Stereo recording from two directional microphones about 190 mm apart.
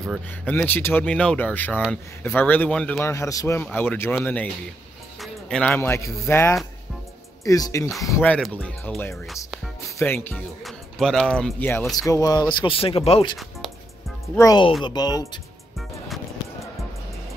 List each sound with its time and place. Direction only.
0.5 s speech: 10° left (ahead or behind)
9.9 s speech: 10° left (ahead or behind)
11.9 s speech: 20° left (ahead or behind)
14.3 s speech: 20° left (ahead or behind)